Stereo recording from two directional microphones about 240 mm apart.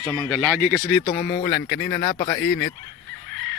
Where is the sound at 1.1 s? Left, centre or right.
Left.